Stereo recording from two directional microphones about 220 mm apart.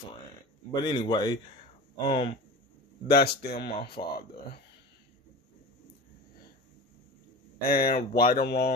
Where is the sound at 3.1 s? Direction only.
45° left (ahead or behind).